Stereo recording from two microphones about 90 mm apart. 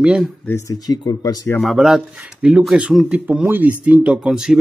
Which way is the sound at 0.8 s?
45° left (ahead or behind).